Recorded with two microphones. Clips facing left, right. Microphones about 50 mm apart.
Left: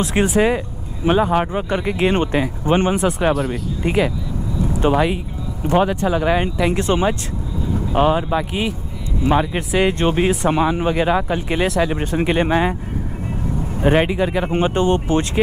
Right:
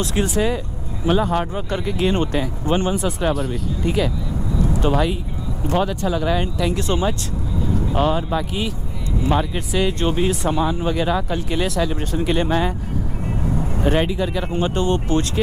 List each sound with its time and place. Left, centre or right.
0.0 s speech: left
3.3 s speech: centre
3.8 s speech: left
10.9 s speech: left
13.7 s speech: left